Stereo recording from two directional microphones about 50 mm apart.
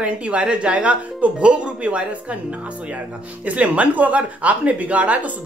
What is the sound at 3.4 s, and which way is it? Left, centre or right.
Speech, right.